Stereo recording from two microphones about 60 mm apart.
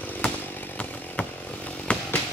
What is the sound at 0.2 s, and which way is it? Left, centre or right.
Chainsaw, centre.